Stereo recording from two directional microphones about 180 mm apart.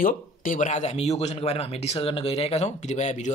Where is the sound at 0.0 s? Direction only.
45° left (ahead or behind).